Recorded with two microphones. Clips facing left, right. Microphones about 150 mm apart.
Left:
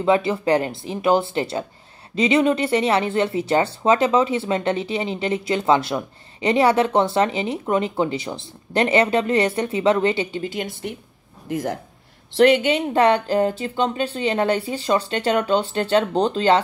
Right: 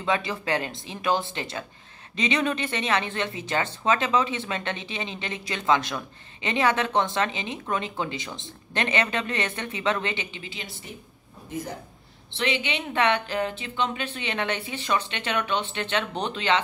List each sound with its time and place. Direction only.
0.3 s speech: 25° left (ahead or behind); by 11.0 s 60° left (ahead or behind)
11.4 s a man's voice: 85° left
12.4 s speech: 45° left (ahead or behind)